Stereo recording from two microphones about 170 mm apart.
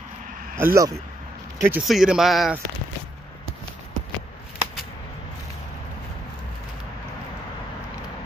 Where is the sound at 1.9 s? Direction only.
Centre (ahead or behind).